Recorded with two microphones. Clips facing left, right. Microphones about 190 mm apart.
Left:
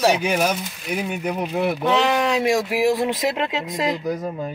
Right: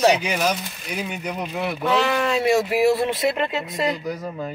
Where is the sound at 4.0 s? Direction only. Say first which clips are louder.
Left 4 dB; 50° left (ahead or behind).